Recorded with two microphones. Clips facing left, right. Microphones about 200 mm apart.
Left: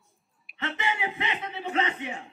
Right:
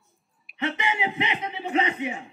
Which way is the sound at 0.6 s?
15° right (ahead or behind).